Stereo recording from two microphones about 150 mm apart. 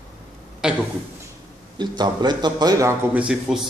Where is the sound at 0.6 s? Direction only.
5° right (ahead or behind).